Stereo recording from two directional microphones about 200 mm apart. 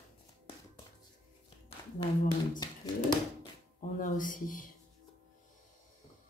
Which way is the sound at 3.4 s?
40° left (ahead or behind).